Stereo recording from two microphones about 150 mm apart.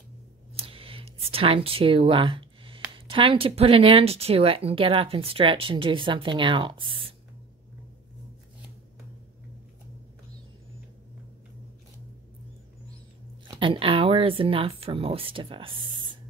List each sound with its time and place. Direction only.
0.6 s speech: 40° right (ahead or behind)
13.6 s speech: 35° right (ahead or behind)